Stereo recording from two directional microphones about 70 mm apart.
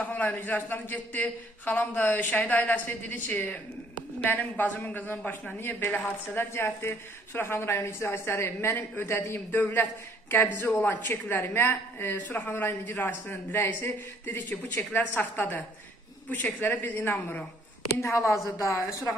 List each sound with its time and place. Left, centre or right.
0.1 s a man's voice: left
17.9 s speech: left